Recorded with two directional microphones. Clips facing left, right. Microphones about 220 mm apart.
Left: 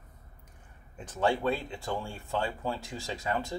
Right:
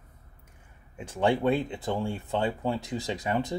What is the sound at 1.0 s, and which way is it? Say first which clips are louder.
Speech: right 3 dB; 15° right (ahead or behind).